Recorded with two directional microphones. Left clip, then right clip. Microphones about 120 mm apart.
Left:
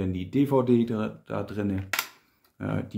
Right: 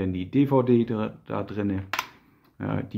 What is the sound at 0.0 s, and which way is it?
Speech, 25° right (ahead or behind).